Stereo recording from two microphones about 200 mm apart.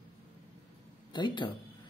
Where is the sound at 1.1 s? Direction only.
25° left (ahead or behind).